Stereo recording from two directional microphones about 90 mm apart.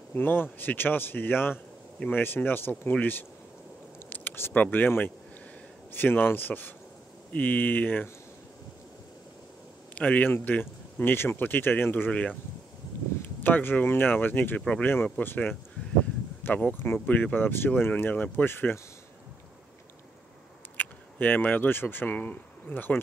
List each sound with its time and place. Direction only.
0.1 s speech: 25° left (ahead or behind)
9.9 s speech: 15° left (ahead or behind)
20.7 s speech: 20° left (ahead or behind)